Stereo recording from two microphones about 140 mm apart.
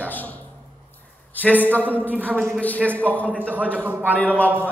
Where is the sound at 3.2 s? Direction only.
10° right (ahead or behind).